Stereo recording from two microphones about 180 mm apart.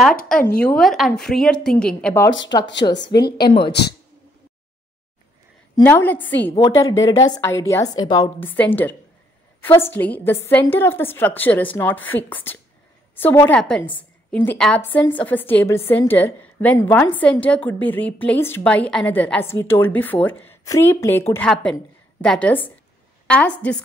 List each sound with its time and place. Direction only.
0.0 s a woman's voice: 5° left (ahead or behind)
2.9 s a woman's voice: 70° left (ahead or behind)
3.4 s speech: 25° left (ahead or behind)
5.9 s a woman's voice: 10° left (ahead or behind)
8.4 s a woman's voice: 10° left (ahead or behind)